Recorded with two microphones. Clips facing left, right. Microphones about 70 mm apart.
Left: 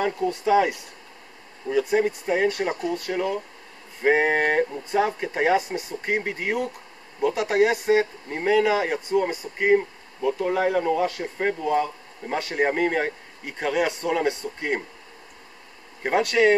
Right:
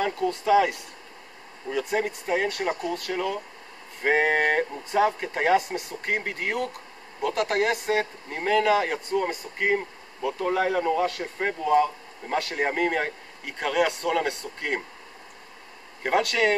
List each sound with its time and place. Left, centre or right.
0.3 s speech: centre
16.0 s speech: centre